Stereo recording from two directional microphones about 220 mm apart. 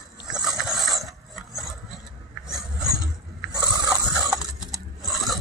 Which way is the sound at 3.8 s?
20° right (ahead or behind).